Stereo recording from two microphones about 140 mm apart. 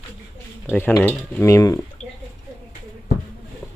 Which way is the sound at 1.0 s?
15° left (ahead or behind).